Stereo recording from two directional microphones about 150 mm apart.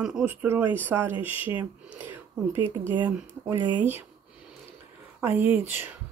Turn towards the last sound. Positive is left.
turn(degrees=-15)  # may be behind; listen again after turning